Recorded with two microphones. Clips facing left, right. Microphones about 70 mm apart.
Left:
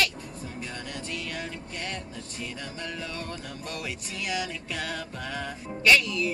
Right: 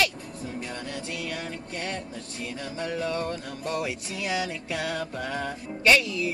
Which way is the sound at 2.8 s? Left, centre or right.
Right.